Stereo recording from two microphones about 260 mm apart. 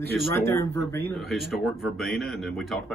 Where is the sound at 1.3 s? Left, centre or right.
Centre.